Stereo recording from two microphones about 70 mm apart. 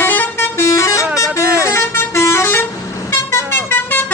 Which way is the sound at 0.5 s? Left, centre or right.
Left.